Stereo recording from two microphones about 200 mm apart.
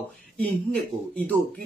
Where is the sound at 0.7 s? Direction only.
5° left (ahead or behind).